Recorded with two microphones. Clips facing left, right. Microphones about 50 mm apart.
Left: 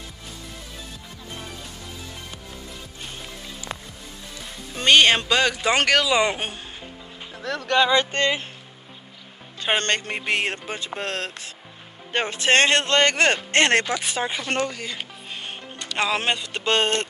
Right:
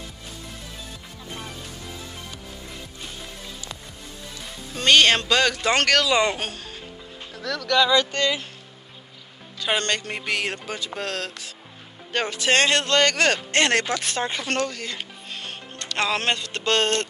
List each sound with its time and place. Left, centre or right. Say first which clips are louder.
4.7 s speech: left 1 dB; centre
7.3 s speech: even; left
9.6 s speech: left 1 dB; left
13.8 s speech: even; centre